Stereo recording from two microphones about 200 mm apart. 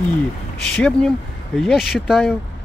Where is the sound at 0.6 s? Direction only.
5° left (ahead or behind).